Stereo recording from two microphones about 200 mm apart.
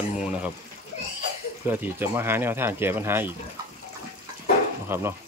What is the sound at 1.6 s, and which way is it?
Speech, 10° right (ahead or behind).